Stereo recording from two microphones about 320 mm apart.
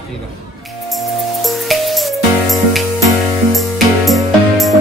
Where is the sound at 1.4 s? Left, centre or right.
Centre.